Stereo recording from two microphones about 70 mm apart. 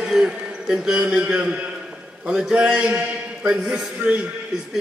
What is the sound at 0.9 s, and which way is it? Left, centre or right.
A man's voice, centre.